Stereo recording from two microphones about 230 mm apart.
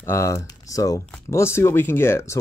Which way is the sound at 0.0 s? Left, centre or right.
Centre.